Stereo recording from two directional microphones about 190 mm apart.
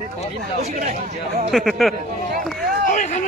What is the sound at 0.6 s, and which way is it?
Speech, 40° right (ahead or behind).